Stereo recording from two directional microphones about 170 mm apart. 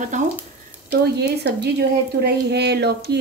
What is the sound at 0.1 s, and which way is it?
Speech, 45° right (ahead or behind).